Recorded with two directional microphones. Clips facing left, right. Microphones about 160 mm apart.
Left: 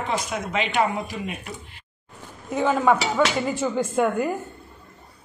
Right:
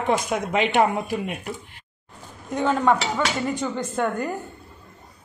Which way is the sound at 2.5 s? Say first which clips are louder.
Left 1 dB; 5° left (ahead or behind).